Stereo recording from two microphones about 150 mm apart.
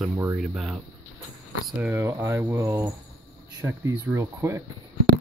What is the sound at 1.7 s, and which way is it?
Speech, 15° right (ahead or behind).